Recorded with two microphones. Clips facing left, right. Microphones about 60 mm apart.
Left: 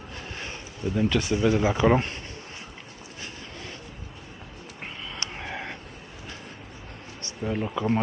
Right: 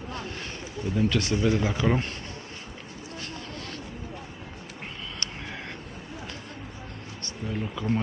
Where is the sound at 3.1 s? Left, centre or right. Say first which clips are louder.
Right 2 dB; centre.